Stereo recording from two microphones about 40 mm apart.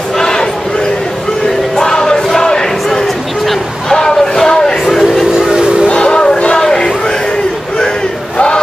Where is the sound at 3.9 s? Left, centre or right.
Centre.